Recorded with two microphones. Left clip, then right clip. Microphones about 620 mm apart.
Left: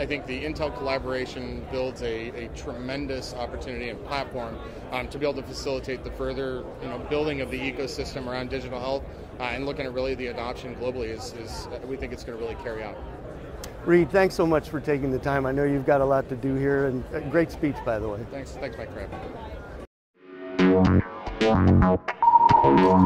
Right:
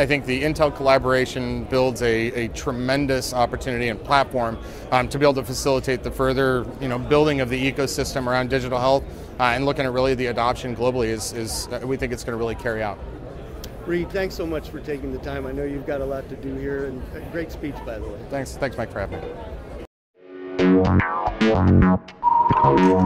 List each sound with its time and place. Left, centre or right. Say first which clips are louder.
0.0 s speech: right 9 dB; right
13.8 s speech: left 5 dB; left
17.4 s speech: left 5 dB; left
18.3 s speech: right 8 dB; right
20.5 s music: right 3 dB; centre